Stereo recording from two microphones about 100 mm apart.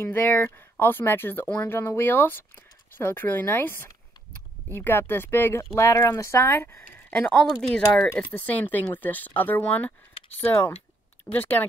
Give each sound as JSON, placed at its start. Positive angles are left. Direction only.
{"t": 0.0, "sound": "speech", "side_deg": 20}
{"t": 7.6, "sound": "speech", "side_deg": 5}
{"t": 11.3, "sound": "speech", "side_deg": 20}